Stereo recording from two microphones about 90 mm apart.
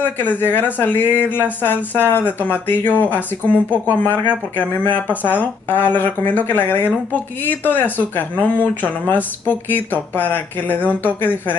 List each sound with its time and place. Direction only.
0.0 s speech: 20° left (ahead or behind)